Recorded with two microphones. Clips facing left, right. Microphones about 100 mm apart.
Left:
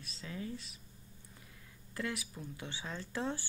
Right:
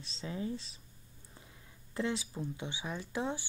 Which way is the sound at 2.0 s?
25° right (ahead or behind).